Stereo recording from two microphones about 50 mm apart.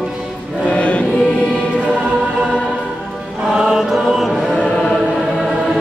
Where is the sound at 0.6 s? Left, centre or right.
Left.